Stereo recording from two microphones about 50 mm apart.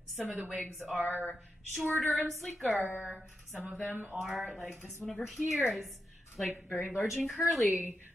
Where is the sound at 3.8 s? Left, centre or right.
Right.